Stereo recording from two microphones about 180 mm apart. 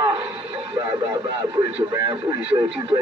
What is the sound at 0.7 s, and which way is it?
Speech, 25° right (ahead or behind).